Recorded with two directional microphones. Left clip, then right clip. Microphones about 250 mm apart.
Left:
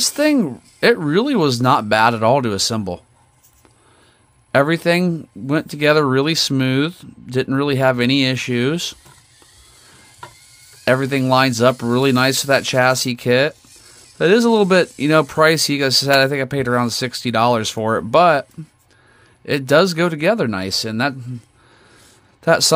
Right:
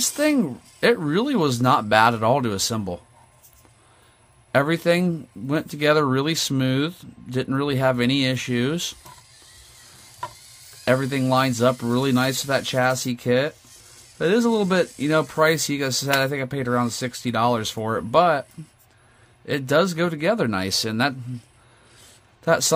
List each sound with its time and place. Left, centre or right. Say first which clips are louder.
0.0 s speech: left 5 dB; centre
4.5 s speech: left 4 dB; centre
10.8 s speech: left 5 dB; left
22.4 s a man's voice: left 5 dB; left